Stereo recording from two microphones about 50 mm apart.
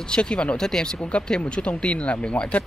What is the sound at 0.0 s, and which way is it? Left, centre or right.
Speech, centre.